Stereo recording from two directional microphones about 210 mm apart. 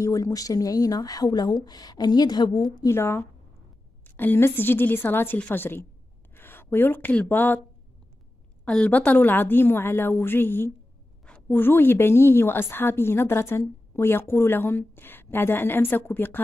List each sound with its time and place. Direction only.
0.0 s a woman's voice: 15° left (ahead or behind)
8.6 s a woman's voice: 5° left (ahead or behind)